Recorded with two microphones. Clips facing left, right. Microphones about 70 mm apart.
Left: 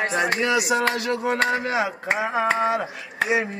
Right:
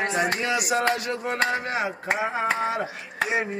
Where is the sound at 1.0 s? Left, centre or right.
Left.